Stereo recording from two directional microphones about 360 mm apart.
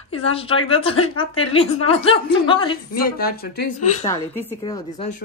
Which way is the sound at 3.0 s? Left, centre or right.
Left.